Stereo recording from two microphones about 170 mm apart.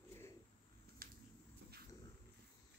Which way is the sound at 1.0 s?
60° right (ahead or behind).